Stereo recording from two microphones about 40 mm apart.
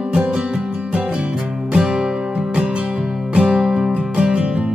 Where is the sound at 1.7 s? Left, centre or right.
Centre.